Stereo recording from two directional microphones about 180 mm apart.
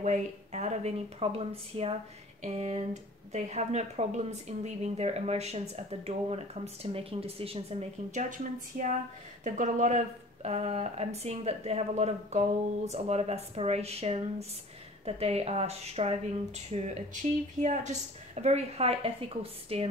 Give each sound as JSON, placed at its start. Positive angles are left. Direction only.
{"t": 0.0, "sound": "speech", "side_deg": -40}
{"t": 8.1, "sound": "a woman's voice", "side_deg": -45}